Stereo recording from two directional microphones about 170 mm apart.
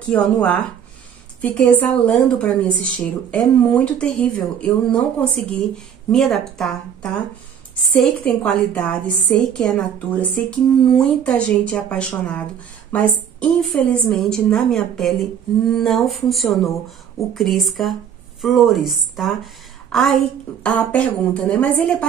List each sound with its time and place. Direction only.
0.1 s a woman's voice: 10° left (ahead or behind)